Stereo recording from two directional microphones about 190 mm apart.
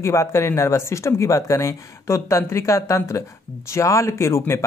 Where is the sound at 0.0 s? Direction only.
15° left (ahead or behind).